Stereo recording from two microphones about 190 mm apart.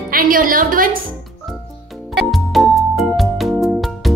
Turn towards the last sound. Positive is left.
turn(degrees=0)  # may be behind; listen again after turning